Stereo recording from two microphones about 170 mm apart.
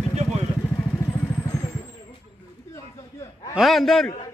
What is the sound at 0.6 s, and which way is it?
Vehicle, 15° left (ahead or behind).